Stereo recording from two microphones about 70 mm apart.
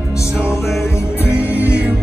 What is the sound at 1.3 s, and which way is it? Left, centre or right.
Music, right.